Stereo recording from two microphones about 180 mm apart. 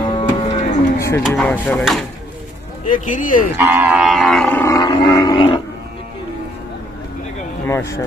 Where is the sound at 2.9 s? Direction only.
45° left (ahead or behind).